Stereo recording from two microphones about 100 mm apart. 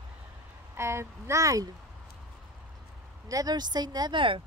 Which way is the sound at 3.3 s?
40° right (ahead or behind).